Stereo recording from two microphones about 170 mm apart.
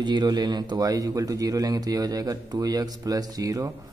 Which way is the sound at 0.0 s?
25° right (ahead or behind).